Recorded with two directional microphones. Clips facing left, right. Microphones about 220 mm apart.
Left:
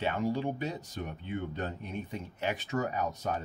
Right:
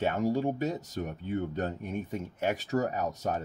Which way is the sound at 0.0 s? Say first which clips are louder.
Right 3 dB; 45° right (ahead or behind).